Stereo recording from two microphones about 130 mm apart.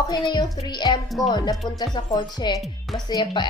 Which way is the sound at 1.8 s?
30° left (ahead or behind).